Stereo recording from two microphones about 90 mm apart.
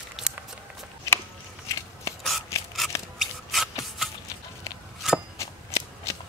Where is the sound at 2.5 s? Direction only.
35° left (ahead or behind).